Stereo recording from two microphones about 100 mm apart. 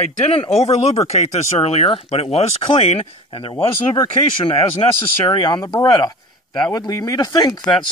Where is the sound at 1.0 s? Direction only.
90° left.